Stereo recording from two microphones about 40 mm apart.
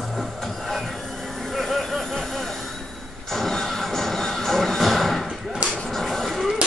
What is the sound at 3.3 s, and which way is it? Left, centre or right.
Music, centre.